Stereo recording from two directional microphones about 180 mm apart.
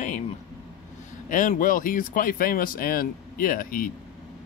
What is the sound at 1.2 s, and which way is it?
Speech, 45° left (ahead or behind).